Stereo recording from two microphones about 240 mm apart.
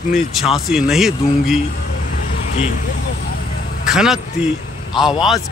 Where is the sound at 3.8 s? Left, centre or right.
Centre.